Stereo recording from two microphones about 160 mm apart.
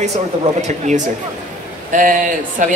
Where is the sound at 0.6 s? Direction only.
50° right (ahead or behind).